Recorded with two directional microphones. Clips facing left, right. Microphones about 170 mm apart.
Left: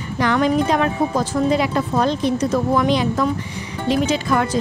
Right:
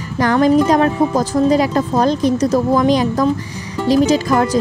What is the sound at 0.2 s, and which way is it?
Speech, 40° right (ahead or behind).